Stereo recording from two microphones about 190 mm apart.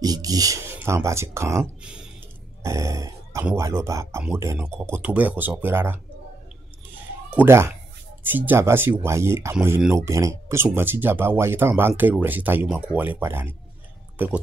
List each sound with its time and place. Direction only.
0.0 s speech: 20° right (ahead or behind)
2.6 s a sound: 15° right (ahead or behind)
3.4 s speech: 15° right (ahead or behind)
7.2 s speech: 10° right (ahead or behind)